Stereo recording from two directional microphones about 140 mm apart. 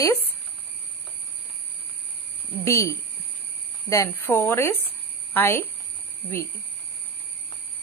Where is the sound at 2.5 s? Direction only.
20° left (ahead or behind).